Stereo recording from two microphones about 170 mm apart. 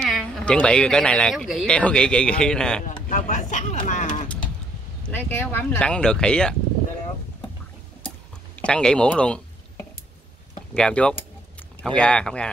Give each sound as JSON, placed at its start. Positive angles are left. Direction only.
{"t": 0.0, "sound": "speech", "side_deg": 5}
{"t": 3.1, "sound": "a sound", "side_deg": 45}
{"t": 5.1, "sound": "speech", "side_deg": 15}
{"t": 8.5, "sound": "speech", "side_deg": 5}
{"t": 10.7, "sound": "speech", "side_deg": 5}